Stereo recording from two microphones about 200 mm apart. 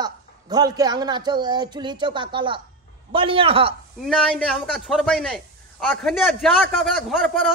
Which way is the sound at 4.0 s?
Centre (ahead or behind).